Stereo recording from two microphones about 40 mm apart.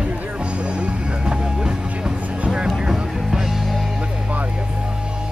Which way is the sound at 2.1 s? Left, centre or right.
Right.